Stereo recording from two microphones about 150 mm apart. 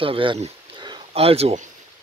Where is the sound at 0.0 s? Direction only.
35° right (ahead or behind).